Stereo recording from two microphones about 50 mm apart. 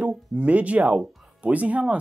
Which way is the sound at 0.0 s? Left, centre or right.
Right.